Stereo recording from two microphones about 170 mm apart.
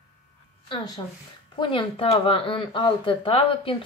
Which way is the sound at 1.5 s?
30° left (ahead or behind).